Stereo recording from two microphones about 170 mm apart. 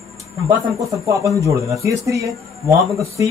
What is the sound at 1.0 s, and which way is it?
Speech, 20° right (ahead or behind).